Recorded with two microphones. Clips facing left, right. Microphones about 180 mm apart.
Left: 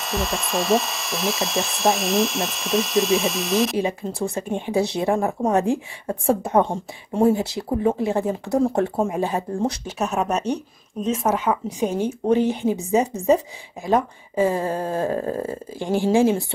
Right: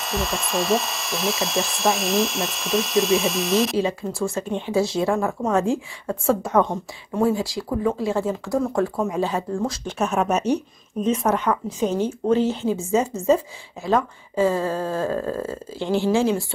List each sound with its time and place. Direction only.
0.0 s speech: centre (ahead or behind)
3.7 s a woman's voice: 15° left (ahead or behind)
6.6 s speech: 30° left (ahead or behind)
9.8 s a woman's voice: centre (ahead or behind); by 16.4 s 20° left (ahead or behind)